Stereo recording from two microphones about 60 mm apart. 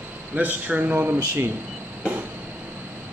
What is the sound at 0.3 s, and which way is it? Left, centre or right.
Speech, right.